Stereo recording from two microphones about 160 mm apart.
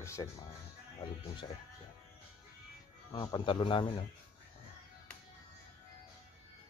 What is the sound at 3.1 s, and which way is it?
Speech, 30° left (ahead or behind).